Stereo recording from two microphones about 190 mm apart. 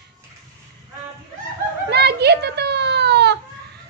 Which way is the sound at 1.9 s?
60° right (ahead or behind).